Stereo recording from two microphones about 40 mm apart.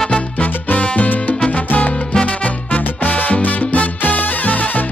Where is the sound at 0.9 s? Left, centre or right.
Left.